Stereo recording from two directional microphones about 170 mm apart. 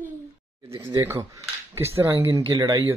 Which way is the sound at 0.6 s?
20° right (ahead or behind).